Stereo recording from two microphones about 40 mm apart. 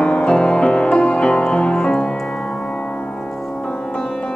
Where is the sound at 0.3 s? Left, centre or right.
Left.